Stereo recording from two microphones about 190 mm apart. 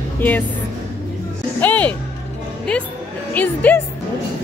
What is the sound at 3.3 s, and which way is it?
Speech, 10° left (ahead or behind).